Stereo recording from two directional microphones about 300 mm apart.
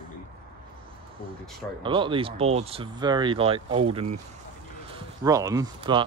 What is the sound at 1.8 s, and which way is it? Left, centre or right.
Speech, centre.